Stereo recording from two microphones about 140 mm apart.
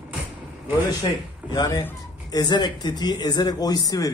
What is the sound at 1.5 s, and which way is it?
Speech, 25° left (ahead or behind).